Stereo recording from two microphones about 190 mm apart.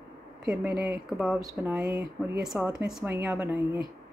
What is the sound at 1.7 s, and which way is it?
Speech, 5° right (ahead or behind).